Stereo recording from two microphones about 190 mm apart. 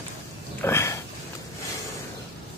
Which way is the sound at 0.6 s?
15° left (ahead or behind).